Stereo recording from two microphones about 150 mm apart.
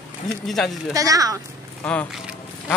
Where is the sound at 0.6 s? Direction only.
Centre (ahead or behind).